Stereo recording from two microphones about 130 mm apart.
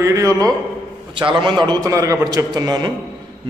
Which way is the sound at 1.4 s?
35° right (ahead or behind).